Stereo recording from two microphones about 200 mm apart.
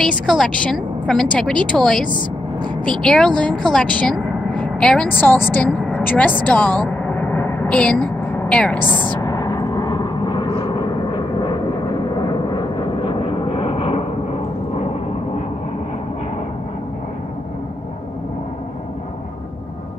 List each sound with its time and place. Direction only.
0.3 s a woman's voice: centre (ahead or behind)
9.0 s gong: 20° left (ahead or behind)
12.2 s vehicle: 20° left (ahead or behind)